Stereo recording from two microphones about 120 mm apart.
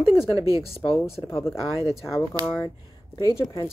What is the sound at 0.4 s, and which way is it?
Speech, 25° right (ahead or behind).